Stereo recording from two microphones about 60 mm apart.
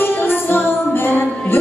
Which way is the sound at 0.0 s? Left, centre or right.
Left.